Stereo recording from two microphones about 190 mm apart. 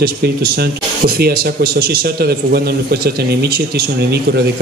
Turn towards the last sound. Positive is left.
turn(degrees=-55)  # may be behind; listen again after turning